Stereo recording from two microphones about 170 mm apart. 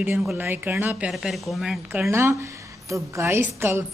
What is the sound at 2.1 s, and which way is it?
A woman's voice, 15° right (ahead or behind).